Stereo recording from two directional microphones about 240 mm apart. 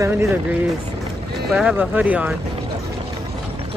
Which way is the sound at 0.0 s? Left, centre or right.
Centre.